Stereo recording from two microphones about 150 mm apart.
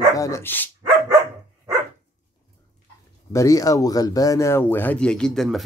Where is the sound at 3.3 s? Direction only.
25° left (ahead or behind).